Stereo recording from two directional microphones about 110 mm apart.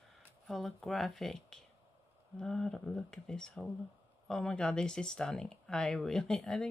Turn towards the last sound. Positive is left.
turn(degrees=5)  # may be behind; listen again after turning